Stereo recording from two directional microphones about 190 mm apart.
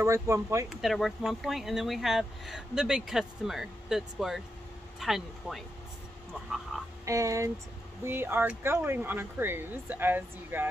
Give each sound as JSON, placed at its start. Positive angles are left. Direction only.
{"t": 0.0, "sound": "speech", "side_deg": -15}
{"t": 0.7, "sound": "speech", "side_deg": 0}
{"t": 7.1, "sound": "speech", "side_deg": -15}